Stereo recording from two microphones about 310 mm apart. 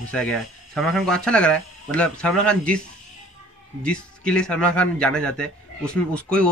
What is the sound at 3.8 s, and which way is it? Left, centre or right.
Speech, centre.